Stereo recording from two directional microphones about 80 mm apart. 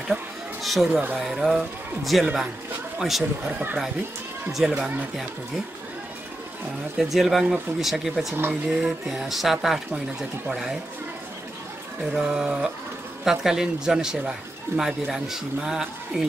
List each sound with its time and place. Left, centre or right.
0.1 s speech: centre
3.4 s speech: centre
4.5 s speech: centre
7.0 s speech: centre
12.1 s speech: centre